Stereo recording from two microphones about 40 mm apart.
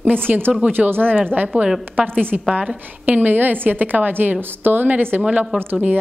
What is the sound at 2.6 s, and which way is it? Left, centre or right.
A woman's voice, right.